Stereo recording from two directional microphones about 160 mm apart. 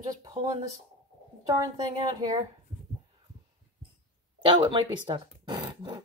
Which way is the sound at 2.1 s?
25° right (ahead or behind).